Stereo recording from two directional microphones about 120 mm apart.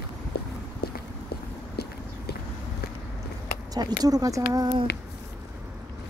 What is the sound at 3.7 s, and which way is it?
Speech, 35° right (ahead or behind).